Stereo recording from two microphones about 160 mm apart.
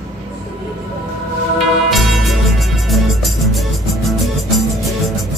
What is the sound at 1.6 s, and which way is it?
Music, centre (ahead or behind).